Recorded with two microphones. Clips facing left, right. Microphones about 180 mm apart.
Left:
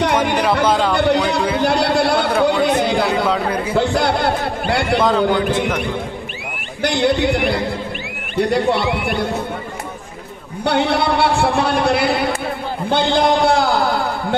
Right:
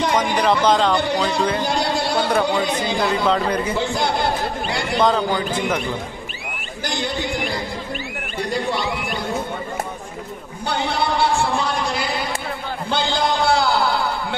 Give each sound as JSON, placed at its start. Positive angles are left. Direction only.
{"t": 0.0, "sound": "a sound", "side_deg": 60}
{"t": 0.7, "sound": "a man's voice", "side_deg": 5}
{"t": 0.9, "sound": "speech", "side_deg": 65}
{"t": 1.6, "sound": "a sound", "side_deg": 65}
{"t": 2.4, "sound": "speech", "side_deg": 60}
{"t": 3.3, "sound": "a man's voice", "side_deg": 5}
{"t": 3.7, "sound": "speech", "side_deg": 65}
{"t": 4.9, "sound": "a man's voice", "side_deg": 0}
{"t": 5.3, "sound": "speech", "side_deg": 65}
{"t": 6.8, "sound": "speech", "side_deg": 65}
{"t": 10.6, "sound": "a sound", "side_deg": 65}
{"t": 12.9, "sound": "a sound", "side_deg": 55}